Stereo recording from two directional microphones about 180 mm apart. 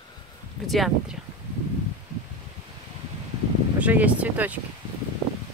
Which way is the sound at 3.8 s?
10° right (ahead or behind).